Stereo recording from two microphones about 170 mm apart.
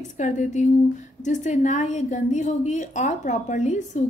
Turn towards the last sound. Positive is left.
turn(degrees=45)  # may be behind; listen again after turning